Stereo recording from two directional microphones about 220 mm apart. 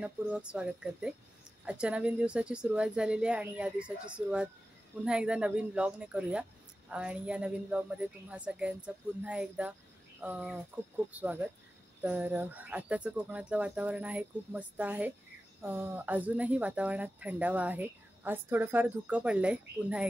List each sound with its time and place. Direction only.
0.0 s a woman's voice: 5° right (ahead or behind)